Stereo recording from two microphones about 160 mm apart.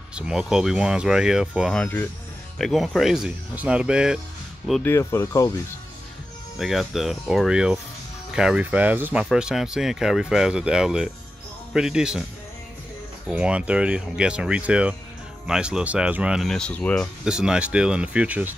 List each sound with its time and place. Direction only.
0.1 s speech: 5° right (ahead or behind)
1.8 s speech: 10° left (ahead or behind)
2.6 s speech: centre (ahead or behind)
4.8 s speech: 15° left (ahead or behind)
6.6 s speech: centre (ahead or behind)
13.3 s speech: 5° right (ahead or behind)